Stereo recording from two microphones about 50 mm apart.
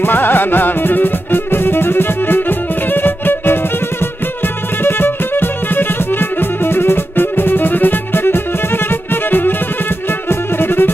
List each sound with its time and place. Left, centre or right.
0.0 s music: left
4.8 s violin: left
10.6 s music: left